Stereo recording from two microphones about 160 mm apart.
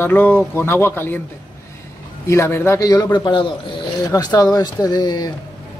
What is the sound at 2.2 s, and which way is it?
Speech, 15° left (ahead or behind).